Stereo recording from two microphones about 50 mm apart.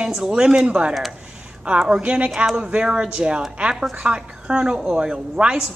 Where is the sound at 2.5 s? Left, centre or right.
Centre.